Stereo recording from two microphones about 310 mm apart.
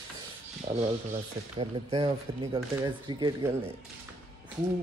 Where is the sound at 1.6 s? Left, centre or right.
Centre.